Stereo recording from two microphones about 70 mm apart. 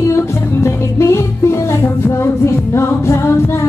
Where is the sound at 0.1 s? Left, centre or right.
Left.